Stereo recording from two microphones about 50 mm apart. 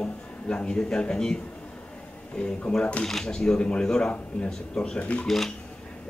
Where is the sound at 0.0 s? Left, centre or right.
Left.